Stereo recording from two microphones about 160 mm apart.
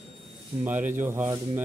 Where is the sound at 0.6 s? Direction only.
10° right (ahead or behind).